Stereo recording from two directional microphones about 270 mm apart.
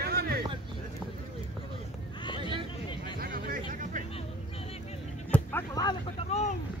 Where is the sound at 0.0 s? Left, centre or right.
Right.